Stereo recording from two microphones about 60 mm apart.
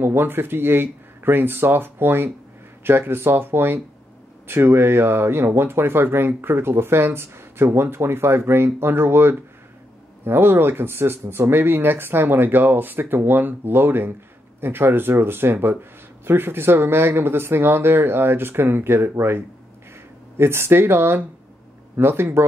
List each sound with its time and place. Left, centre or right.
0.0 s speech: right